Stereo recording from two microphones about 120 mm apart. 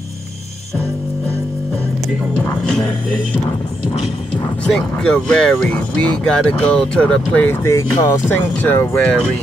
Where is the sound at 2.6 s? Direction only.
5° left (ahead or behind).